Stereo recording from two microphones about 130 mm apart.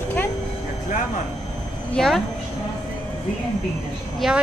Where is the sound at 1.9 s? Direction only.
5° left (ahead or behind).